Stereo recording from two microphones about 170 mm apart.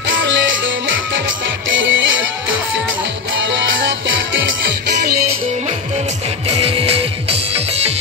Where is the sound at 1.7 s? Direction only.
90° right.